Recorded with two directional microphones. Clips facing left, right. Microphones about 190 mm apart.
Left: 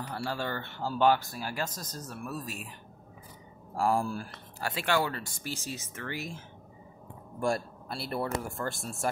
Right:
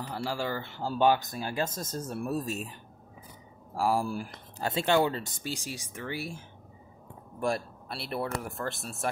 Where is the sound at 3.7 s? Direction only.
5° right (ahead or behind).